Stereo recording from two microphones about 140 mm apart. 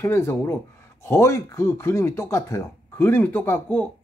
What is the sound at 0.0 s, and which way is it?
Speech, 20° left (ahead or behind).